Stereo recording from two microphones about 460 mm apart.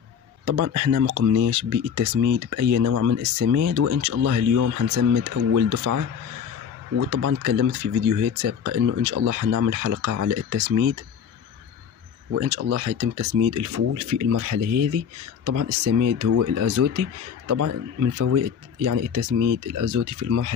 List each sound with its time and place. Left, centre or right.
0.5 s speech: right
12.3 s speech: right